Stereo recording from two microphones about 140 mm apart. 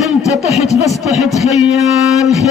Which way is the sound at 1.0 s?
Centre (ahead or behind).